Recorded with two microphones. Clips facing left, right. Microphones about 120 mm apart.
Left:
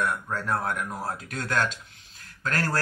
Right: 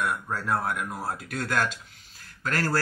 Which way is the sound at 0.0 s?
5° right (ahead or behind).